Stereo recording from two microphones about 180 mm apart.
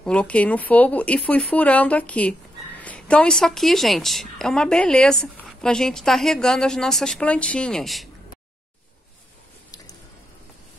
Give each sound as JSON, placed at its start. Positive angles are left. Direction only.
{"t": 0.0, "sound": "speech", "side_deg": 5}